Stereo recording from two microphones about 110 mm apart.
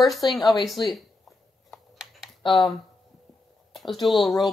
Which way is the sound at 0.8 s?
40° left (ahead or behind).